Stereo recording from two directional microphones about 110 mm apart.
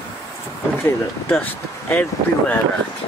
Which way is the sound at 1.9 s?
15° left (ahead or behind).